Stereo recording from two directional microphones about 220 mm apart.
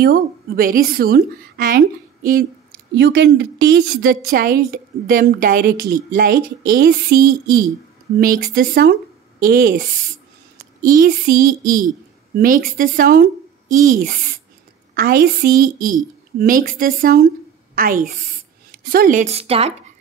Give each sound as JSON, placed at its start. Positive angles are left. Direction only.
{"t": 0.0, "sound": "a woman's voice", "side_deg": -40}
{"t": 2.9, "sound": "a woman's voice", "side_deg": -50}